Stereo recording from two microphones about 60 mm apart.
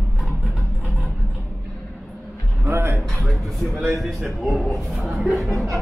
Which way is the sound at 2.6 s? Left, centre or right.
Right.